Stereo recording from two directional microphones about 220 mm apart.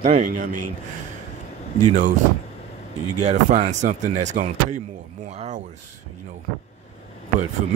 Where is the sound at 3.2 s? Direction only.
30° right (ahead or behind).